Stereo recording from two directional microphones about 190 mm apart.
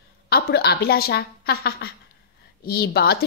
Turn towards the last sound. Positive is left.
turn(degrees=55)  # may be behind; listen again after turning